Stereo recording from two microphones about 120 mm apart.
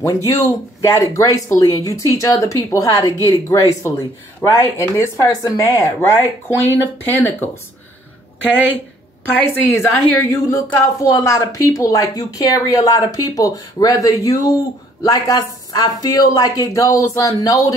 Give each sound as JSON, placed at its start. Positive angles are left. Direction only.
{"t": 0.0, "sound": "speech", "side_deg": 25}
{"t": 6.1, "sound": "speech", "side_deg": 15}
{"t": 9.3, "sound": "speech", "side_deg": 15}